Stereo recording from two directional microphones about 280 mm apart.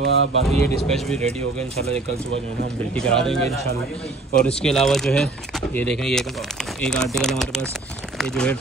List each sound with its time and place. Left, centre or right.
0.0 s speech: right
0.5 s speech: centre
2.9 s speech: centre